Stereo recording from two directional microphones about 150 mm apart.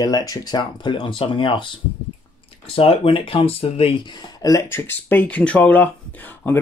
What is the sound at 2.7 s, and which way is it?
Speech, 40° left (ahead or behind).